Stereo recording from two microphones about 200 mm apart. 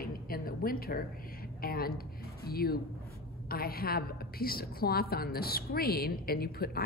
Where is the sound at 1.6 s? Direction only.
50° left (ahead or behind).